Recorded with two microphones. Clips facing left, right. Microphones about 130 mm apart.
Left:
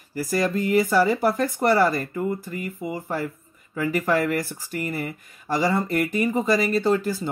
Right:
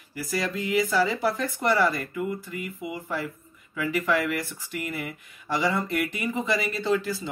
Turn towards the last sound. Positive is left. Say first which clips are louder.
# left 4 dB
turn(degrees=45)  # may be behind; listen again after turning